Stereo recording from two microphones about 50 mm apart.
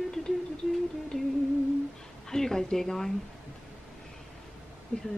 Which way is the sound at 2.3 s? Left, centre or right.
Centre.